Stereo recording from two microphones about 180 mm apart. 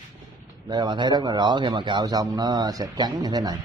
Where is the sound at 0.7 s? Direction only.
25° right (ahead or behind).